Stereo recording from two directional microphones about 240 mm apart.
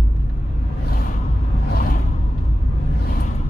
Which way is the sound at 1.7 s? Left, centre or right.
Left.